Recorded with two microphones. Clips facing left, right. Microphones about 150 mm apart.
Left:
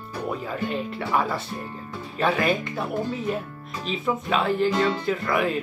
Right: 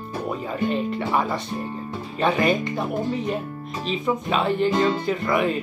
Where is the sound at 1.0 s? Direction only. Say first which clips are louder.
Right 1 dB; 20° right (ahead or behind).